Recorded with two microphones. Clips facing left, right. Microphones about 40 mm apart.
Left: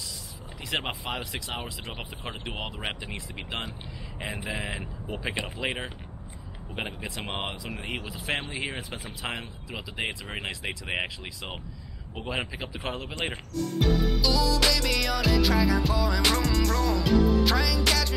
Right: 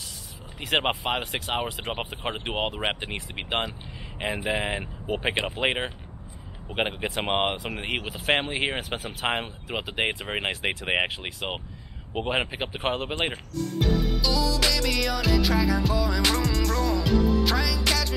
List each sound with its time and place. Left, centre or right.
0.6 s speech: right
4.5 s speech: right
7.2 s speech: right
13.6 s music: centre